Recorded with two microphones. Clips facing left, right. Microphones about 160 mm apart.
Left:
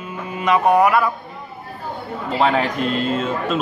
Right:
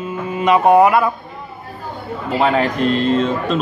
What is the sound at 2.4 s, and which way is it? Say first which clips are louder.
Speech: right 2 dB; centre (ahead or behind).